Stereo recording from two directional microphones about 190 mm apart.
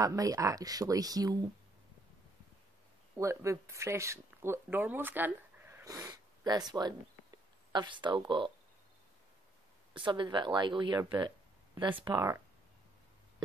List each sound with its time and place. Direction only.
0.0 s speech: 15° right (ahead or behind)
3.2 s speech: 15° right (ahead or behind)
9.9 s speech: 25° right (ahead or behind)